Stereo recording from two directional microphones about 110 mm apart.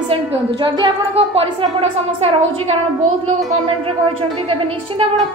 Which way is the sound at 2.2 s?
65° right (ahead or behind).